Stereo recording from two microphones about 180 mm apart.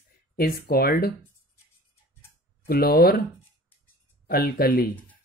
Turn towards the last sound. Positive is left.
turn(degrees=55)  # may be behind; listen again after turning